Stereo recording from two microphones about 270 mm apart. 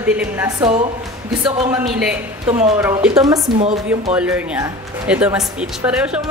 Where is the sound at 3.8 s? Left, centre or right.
Centre.